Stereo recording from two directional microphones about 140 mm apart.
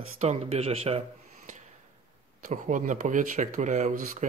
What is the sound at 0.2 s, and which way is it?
Speech, 50° right (ahead or behind).